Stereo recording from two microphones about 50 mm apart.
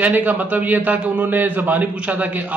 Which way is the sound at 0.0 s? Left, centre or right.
Right.